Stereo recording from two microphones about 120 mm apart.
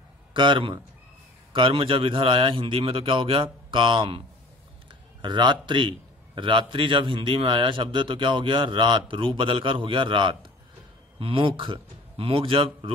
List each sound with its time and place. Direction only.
0.3 s a man's voice: 45° right (ahead or behind)
5.2 s a man's voice: 40° right (ahead or behind)